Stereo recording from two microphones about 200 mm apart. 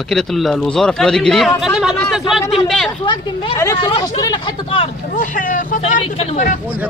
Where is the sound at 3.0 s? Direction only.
25° left (ahead or behind).